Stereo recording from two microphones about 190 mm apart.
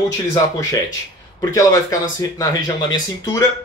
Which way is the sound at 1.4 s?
15° left (ahead or behind).